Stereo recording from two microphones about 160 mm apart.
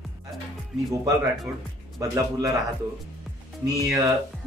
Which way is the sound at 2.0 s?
20° right (ahead or behind).